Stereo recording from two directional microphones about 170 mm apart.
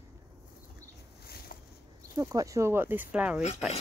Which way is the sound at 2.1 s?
20° right (ahead or behind).